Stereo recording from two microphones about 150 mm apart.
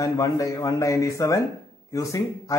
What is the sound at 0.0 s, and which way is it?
A man's voice, 20° left (ahead or behind).